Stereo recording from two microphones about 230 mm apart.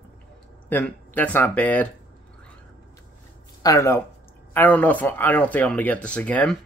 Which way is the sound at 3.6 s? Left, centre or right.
Centre.